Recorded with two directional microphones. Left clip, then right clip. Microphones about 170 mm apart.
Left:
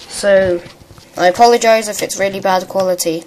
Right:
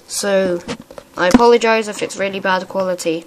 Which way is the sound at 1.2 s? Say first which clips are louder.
Left 2 dB; 45° right (ahead or behind).